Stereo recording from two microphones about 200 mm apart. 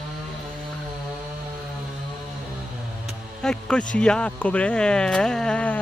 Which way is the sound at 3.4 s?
5° left (ahead or behind).